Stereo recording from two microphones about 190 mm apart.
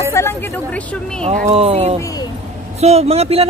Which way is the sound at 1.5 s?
30° right (ahead or behind).